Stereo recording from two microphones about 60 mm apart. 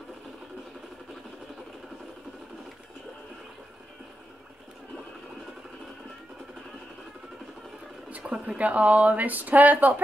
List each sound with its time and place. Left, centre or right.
8.5 s speech: right